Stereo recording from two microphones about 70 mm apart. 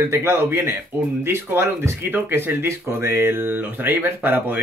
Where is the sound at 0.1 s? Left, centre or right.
Right.